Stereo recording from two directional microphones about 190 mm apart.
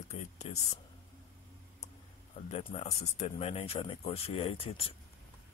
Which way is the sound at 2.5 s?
35° left (ahead or behind).